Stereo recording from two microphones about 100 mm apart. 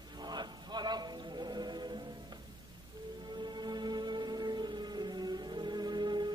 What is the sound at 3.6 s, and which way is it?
Music, 45° right (ahead or behind).